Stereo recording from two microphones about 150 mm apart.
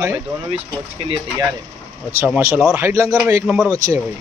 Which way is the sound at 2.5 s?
10° right (ahead or behind).